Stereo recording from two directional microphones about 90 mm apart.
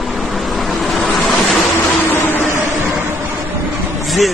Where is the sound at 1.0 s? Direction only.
Centre (ahead or behind).